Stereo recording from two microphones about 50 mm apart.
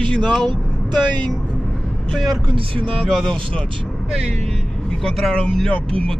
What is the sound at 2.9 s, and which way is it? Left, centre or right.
Speech, centre.